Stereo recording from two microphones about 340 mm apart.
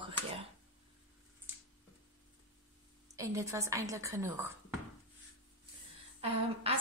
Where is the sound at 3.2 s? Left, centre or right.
Centre.